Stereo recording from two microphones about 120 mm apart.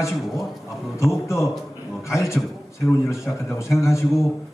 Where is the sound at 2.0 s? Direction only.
25° left (ahead or behind).